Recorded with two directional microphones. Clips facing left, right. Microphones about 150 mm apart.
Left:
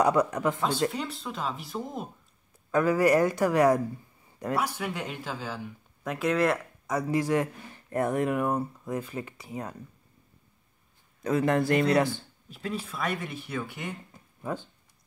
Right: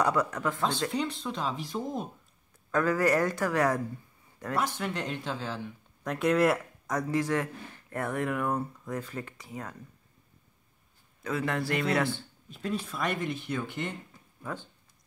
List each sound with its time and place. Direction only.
0.0 s speech: 20° left (ahead or behind); by 2.0 s centre (ahead or behind)
2.7 s speech: 10° left (ahead or behind)
11.2 s a man's voice: 45° left (ahead or behind)
12.0 s speech: 5° left (ahead or behind)